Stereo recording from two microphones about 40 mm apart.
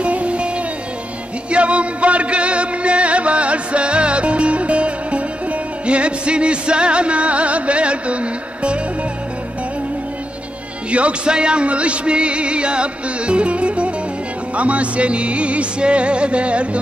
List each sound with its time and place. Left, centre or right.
0.0 s music: right
10.9 s music: right